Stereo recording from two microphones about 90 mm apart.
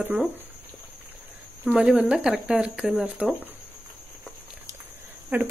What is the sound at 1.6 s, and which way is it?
Speech, 10° right (ahead or behind).